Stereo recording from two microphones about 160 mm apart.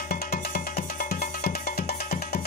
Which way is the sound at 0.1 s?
75° left (ahead or behind).